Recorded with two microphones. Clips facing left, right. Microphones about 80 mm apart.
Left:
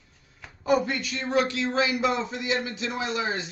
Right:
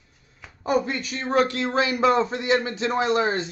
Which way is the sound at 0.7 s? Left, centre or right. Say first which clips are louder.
Even; right.